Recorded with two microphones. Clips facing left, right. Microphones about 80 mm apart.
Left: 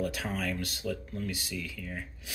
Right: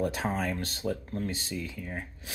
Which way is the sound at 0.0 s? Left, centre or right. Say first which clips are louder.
Right 3 dB; right.